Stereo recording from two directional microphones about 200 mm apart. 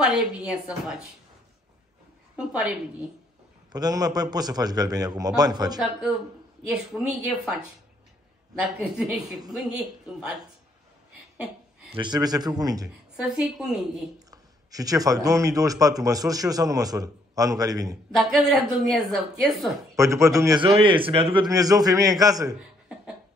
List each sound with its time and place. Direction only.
0.0 s a woman's voice: 5° right (ahead or behind)
3.7 s a man's voice: 20° right (ahead or behind)
6.7 s a woman's voice: 5° right (ahead or behind)
8.5 s a woman's voice: 5° right (ahead or behind)
11.9 s a man's voice: 20° right (ahead or behind)
13.1 s a woman's voice: 5° right (ahead or behind)
14.3 s a man's voice: 20° right (ahead or behind)
18.1 s a woman's voice: centre (ahead or behind)
20.0 s a man's voice: 15° right (ahead or behind)